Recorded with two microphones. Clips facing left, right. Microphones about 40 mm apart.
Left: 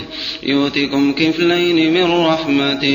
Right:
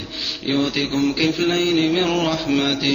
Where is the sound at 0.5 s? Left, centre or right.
Left.